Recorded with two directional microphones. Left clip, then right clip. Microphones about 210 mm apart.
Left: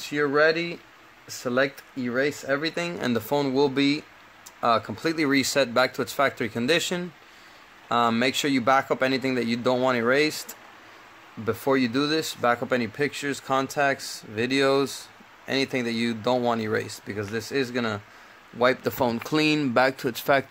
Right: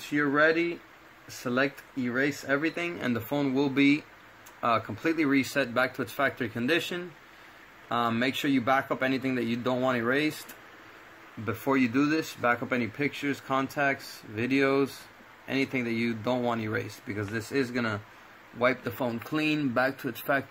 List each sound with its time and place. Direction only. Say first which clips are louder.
0.1 s speech: left 3 dB; 35° left (ahead or behind)
11.4 s speech: left 4 dB; 35° left (ahead or behind)
18.6 s speech: left 5 dB; 45° left (ahead or behind)